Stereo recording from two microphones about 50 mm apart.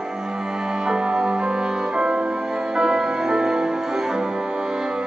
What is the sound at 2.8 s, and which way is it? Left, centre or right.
Music, centre.